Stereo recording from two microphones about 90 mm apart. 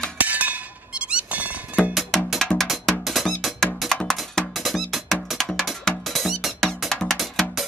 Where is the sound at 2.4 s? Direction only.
Centre (ahead or behind).